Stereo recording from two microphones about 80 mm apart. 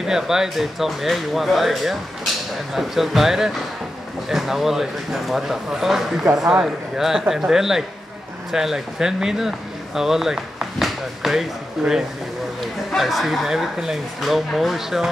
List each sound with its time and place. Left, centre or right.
0.0 s a man's voice: centre
12.9 s a man's voice: centre